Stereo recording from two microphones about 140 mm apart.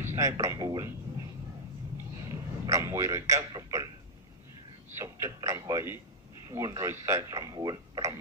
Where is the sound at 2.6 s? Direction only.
20° right (ahead or behind).